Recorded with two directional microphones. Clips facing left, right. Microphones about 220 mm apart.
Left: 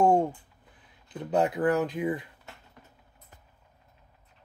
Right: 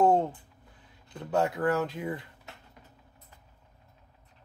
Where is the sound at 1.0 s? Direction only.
20° left (ahead or behind).